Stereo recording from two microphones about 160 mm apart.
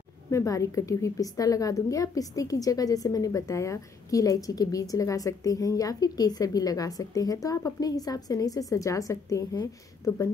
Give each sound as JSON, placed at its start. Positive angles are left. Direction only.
{"t": 0.3, "sound": "a woman's voice", "side_deg": 20}